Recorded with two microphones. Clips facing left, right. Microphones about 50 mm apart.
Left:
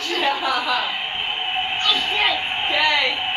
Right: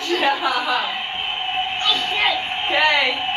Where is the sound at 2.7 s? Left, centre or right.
Centre.